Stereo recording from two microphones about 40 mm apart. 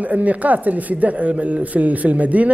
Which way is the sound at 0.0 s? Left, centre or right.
Right.